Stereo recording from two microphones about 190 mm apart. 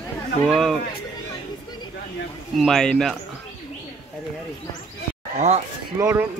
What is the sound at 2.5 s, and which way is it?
Mantra, centre (ahead or behind).